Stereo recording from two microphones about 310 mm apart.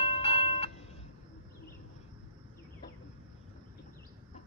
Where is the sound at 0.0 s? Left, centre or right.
Centre.